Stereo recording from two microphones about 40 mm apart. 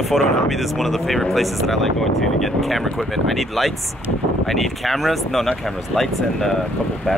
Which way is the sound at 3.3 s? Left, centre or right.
Centre.